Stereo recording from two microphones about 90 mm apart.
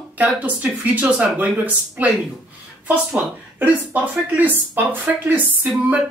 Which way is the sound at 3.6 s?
20° right (ahead or behind).